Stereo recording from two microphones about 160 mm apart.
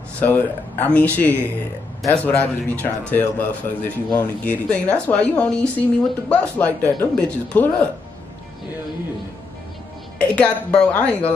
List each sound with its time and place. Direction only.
0.2 s a woman's voice: 10° left (ahead or behind)
10.1 s a woman's voice: 10° left (ahead or behind)